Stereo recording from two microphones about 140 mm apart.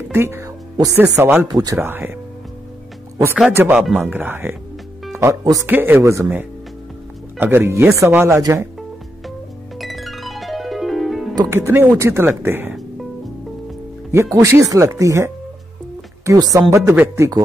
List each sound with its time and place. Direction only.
0.1 s speech: 20° right (ahead or behind)
1.5 s speech: 25° right (ahead or behind)
3.5 s speech: 15° right (ahead or behind)
5.7 s speech: 15° right (ahead or behind)
7.3 s speech: 15° right (ahead or behind)
9.8 s music: centre (ahead or behind)
11.3 s speech: 20° right (ahead or behind)
14.1 s speech: 20° right (ahead or behind)